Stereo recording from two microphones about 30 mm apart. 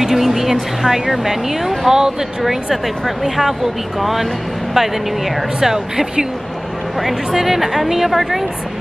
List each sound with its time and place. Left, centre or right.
0.0 s speech: centre
3.3 s speech: centre
5.6 s speech: centre
7.0 s speech: centre